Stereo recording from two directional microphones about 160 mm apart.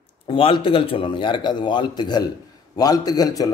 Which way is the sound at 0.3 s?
30° left (ahead or behind).